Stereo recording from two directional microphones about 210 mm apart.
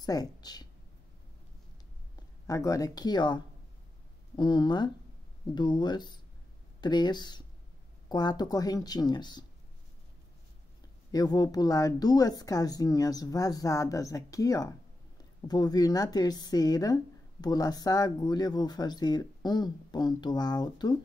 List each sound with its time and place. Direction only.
0.0 s speech: 20° left (ahead or behind)
2.4 s a woman's voice: 15° left (ahead or behind)
11.1 s a woman's voice: 20° left (ahead or behind)